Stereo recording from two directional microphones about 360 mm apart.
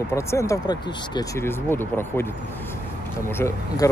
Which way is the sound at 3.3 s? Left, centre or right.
Centre.